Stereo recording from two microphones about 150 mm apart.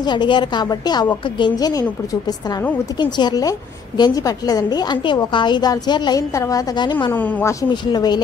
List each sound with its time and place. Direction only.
0.0 s a woman's voice: 30° left (ahead or behind)
3.0 s a woman's voice: 30° left (ahead or behind)
7.1 s a woman's voice: 10° left (ahead or behind)
7.7 s a woman's voice: 30° left (ahead or behind)